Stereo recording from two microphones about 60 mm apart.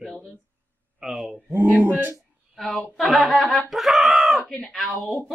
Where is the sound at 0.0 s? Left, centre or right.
Centre.